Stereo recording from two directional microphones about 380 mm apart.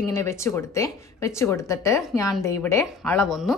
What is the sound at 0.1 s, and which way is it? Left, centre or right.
Speech, centre.